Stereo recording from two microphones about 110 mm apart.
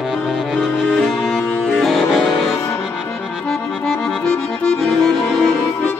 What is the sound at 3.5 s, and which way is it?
Accordion, 5° left (ahead or behind).